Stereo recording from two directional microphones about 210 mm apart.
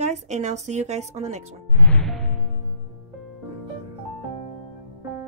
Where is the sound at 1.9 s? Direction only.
Centre (ahead or behind).